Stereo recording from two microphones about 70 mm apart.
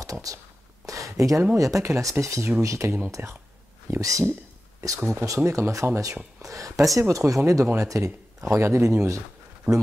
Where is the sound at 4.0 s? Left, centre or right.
Right.